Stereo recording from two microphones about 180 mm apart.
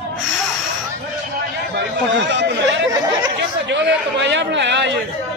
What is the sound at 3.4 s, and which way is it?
A man's voice, 75° right (ahead or behind).